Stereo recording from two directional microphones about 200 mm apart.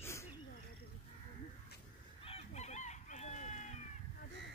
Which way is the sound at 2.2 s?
30° left (ahead or behind).